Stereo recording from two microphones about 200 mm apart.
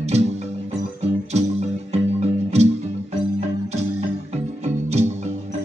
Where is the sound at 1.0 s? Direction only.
35° right (ahead or behind).